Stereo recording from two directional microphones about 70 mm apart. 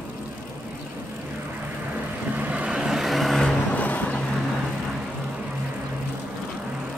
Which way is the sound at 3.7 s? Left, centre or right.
Left.